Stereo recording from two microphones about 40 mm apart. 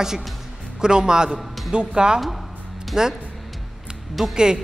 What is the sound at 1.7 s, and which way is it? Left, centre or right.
A woman's voice, right.